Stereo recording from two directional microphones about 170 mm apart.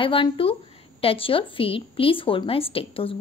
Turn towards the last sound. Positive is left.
turn(degrees=35)  # may be behind; listen again after turning